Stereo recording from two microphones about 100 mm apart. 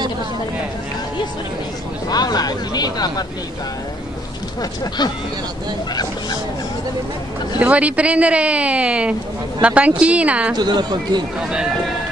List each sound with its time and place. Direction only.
2.0 s speech: 40° left (ahead or behind)
4.6 s speech: 45° left (ahead or behind)
7.5 s speech: 15° right (ahead or behind)
10.5 s a woman's voice: 45° right (ahead or behind)